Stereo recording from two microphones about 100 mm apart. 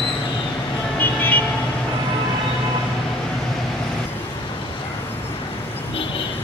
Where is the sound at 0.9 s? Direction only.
20° left (ahead or behind).